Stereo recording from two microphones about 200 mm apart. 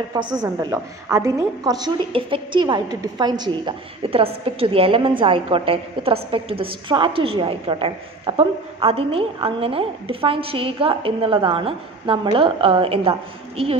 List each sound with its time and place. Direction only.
0.1 s a woman's voice: 20° right (ahead or behind)